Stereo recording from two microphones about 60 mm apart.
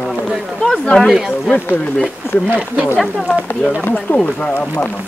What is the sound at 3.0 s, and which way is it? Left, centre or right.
Speech, centre.